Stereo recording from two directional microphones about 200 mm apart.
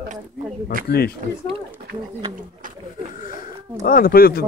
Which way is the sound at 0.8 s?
50° left (ahead or behind).